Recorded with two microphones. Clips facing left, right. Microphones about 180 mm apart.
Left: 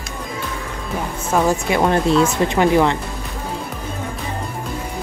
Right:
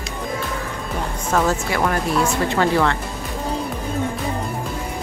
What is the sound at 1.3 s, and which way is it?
Speech, 15° left (ahead or behind).